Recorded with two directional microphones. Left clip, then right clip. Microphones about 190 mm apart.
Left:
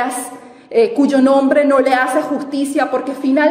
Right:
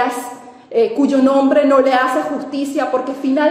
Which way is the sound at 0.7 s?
40° left (ahead or behind).